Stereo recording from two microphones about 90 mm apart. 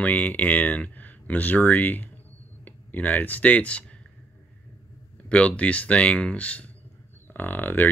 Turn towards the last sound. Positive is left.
turn(degrees=20)  # may be behind; listen again after turning